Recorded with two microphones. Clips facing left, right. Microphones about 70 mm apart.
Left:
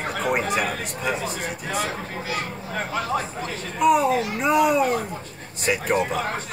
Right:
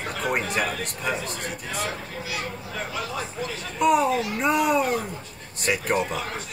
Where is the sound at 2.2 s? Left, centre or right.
Left.